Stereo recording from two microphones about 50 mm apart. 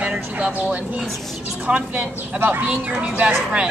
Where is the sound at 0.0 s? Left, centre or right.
Right.